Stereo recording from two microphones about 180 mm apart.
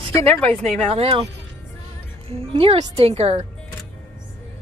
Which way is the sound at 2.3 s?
30° right (ahead or behind).